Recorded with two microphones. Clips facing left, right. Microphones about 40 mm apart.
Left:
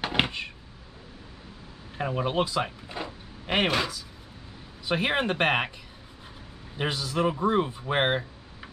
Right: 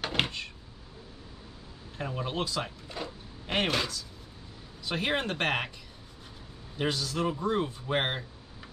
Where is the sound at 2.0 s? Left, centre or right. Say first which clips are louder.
Left 6 dB; left.